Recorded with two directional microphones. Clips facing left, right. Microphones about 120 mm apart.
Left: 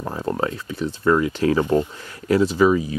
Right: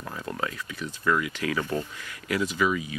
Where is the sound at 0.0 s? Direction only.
35° left (ahead or behind).